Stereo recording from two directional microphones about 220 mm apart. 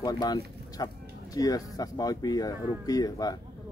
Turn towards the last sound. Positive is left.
turn(degrees=15)  # may be behind; listen again after turning